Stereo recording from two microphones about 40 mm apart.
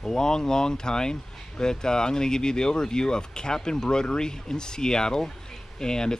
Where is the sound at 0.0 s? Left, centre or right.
Centre.